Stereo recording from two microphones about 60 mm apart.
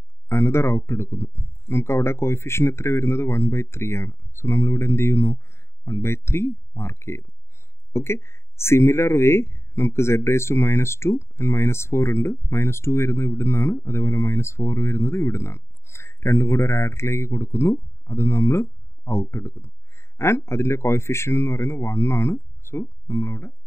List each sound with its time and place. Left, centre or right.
0.3 s speech: left